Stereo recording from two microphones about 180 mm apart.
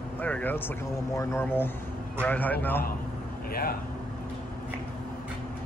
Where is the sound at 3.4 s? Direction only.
55° left (ahead or behind).